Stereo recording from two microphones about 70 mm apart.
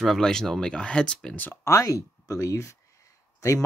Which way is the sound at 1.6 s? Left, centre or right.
Left.